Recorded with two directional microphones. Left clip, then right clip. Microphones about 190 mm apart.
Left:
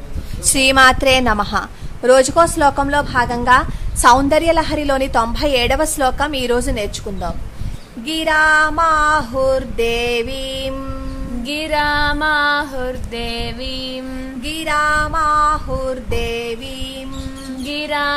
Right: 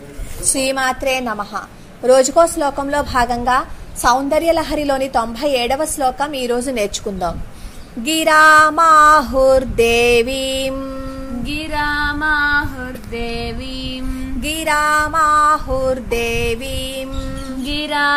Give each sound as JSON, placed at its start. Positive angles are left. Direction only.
{"t": 0.5, "sound": "female singing", "side_deg": 20}
{"t": 2.0, "sound": "a woman's voice", "side_deg": 10}
{"t": 3.4, "sound": "a woman's voice", "side_deg": 10}
{"t": 6.7, "sound": "female singing", "side_deg": -15}
{"t": 11.4, "sound": "female singing", "side_deg": 25}
{"t": 14.4, "sound": "female singing", "side_deg": -15}
{"t": 17.6, "sound": "music", "side_deg": 0}